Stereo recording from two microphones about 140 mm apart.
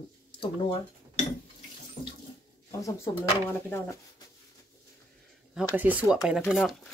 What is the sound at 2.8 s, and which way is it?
Speech, 20° left (ahead or behind).